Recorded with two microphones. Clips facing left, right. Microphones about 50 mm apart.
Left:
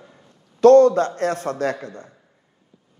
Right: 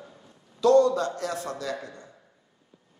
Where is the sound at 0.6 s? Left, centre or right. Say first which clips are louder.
Left 8 dB; left.